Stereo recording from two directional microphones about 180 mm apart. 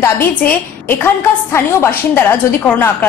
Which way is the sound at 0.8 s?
10° left (ahead or behind).